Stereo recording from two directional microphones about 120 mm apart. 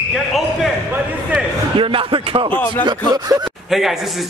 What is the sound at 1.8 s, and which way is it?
Speech, 45° right (ahead or behind).